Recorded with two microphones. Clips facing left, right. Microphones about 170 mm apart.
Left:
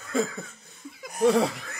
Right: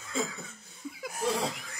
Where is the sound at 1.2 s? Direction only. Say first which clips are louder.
Left 10 dB; 60° left (ahead or behind).